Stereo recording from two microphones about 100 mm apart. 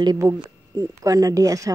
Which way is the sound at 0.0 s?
40° right (ahead or behind).